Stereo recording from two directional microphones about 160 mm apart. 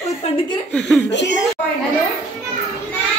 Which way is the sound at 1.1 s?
90° left.